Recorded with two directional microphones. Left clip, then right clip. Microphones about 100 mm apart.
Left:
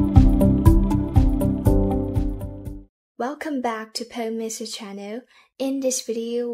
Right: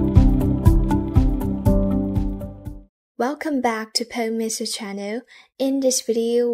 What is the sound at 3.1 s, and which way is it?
Speech, 30° right (ahead or behind).